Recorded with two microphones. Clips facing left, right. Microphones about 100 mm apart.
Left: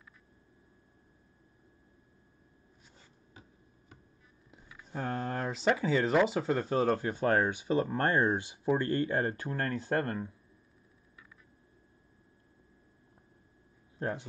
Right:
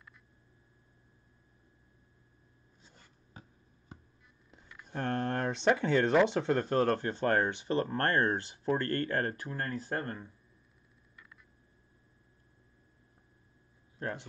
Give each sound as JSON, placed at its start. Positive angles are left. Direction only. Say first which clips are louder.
{"t": 4.5, "sound": "speech", "louder": "left 1 dB", "side_deg": 5}
{"t": 9.5, "sound": "speech", "louder": "left 4 dB", "side_deg": 50}